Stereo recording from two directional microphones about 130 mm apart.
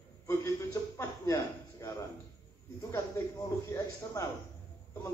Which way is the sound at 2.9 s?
25° left (ahead or behind).